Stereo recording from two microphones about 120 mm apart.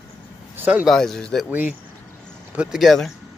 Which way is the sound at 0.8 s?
Centre (ahead or behind).